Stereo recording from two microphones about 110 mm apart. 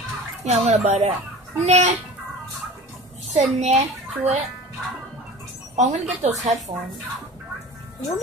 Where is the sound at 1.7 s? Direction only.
90° right.